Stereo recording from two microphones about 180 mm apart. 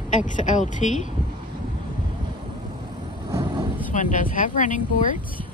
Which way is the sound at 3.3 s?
25° right (ahead or behind).